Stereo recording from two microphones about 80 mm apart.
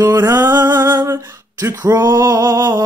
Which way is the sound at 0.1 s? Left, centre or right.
Right.